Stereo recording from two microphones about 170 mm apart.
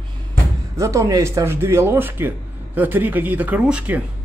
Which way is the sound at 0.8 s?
20° right (ahead or behind).